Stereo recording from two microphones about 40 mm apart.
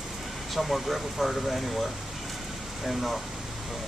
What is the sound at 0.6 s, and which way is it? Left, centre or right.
Speech, centre.